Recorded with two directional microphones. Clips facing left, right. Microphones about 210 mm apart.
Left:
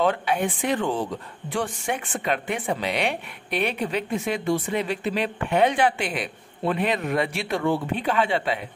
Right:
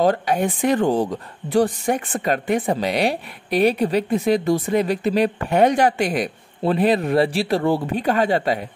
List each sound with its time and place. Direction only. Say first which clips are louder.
0.0 s speech: right 4 dB; 40° right (ahead or behind)